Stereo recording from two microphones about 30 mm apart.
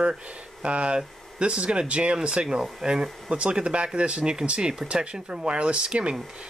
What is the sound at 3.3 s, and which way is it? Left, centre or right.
Speech, right.